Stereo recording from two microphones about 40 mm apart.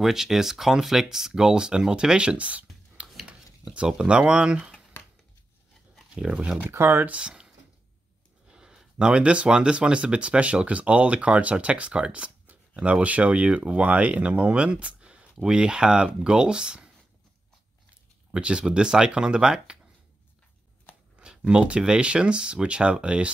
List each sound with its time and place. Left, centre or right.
0.0 s speech: centre; by 3.1 s right
3.7 s speech: right
6.2 s speech: right
6.8 s speech: right
7.1 s speech: right
8.5 s a sound: centre
9.5 s speech: right
13.0 s speech: right
18.3 s speech: right
21.2 s speech: right